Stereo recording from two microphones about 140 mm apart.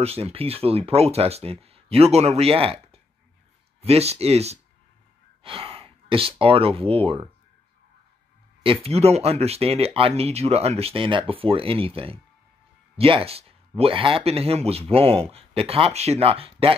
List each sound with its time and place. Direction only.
0.0 s speech: 45° right (ahead or behind)
8.6 s speech: 45° right (ahead or behind)